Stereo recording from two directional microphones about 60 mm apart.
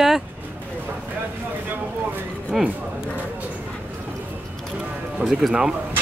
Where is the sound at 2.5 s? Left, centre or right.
Centre.